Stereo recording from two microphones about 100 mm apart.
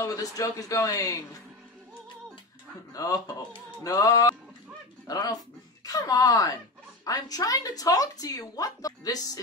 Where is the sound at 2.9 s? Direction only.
35° left (ahead or behind).